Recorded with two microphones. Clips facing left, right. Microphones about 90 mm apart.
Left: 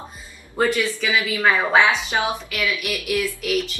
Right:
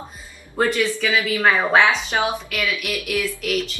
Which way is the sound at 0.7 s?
15° left (ahead or behind).